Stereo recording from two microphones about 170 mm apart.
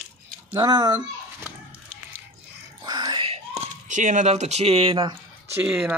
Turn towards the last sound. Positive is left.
turn(degrees=-10)  # may be behind; listen again after turning